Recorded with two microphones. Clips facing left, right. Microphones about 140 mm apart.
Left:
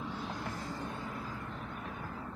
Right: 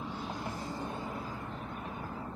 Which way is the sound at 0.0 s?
10° right (ahead or behind).